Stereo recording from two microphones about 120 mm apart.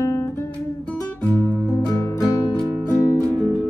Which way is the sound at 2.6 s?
30° right (ahead or behind).